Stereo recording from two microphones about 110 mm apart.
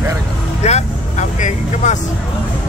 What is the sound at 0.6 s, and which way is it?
Speech, 85° left.